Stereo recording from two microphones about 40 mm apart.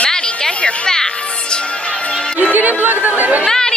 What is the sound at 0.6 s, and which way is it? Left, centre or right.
Music, centre.